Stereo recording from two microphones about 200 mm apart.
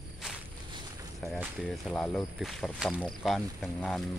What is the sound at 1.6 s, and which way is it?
Speech, 5° left (ahead or behind).